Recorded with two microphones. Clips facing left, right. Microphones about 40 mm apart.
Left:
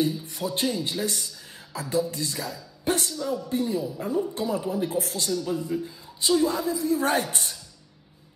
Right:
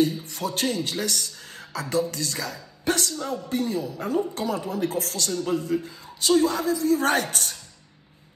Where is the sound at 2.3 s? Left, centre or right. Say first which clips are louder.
Right 1 dB; right.